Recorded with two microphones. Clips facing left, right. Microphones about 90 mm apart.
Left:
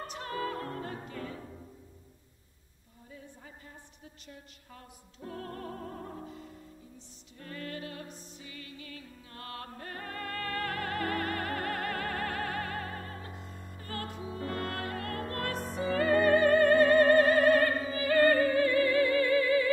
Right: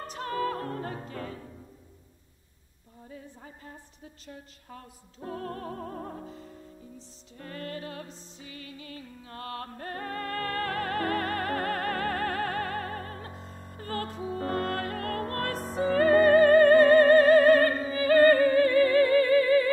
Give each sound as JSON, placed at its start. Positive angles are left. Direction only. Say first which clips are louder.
{"t": 0.0, "sound": "opera", "louder": "right 5 dB", "side_deg": -45}
{"t": 4.3, "sound": "opera", "louder": "right 6 dB", "side_deg": -45}
{"t": 8.1, "sound": "music", "louder": "right 2 dB", "side_deg": -35}